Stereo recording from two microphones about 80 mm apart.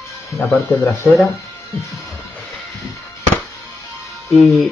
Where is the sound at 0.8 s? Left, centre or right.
Left.